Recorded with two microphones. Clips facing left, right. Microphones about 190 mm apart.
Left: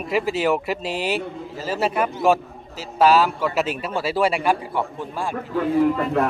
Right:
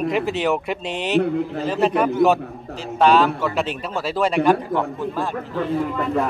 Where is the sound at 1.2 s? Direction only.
65° right (ahead or behind).